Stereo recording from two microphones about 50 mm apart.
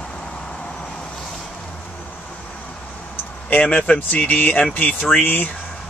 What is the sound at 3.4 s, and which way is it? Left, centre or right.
Speech, left.